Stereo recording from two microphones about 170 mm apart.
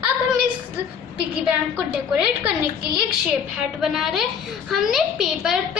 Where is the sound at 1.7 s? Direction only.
5° right (ahead or behind).